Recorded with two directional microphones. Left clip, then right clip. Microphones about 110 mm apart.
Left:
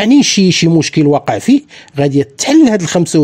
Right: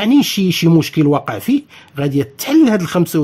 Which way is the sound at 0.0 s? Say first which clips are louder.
Left 5 dB; 40° left (ahead or behind).